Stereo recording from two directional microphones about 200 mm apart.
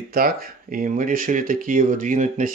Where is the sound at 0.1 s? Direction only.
45° right (ahead or behind).